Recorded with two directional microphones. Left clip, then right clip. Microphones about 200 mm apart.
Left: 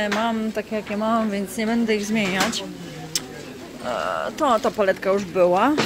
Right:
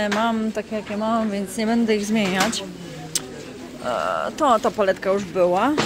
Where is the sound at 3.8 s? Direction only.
10° right (ahead or behind).